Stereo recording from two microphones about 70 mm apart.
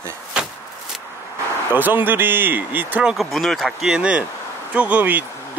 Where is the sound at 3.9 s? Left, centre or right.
Centre.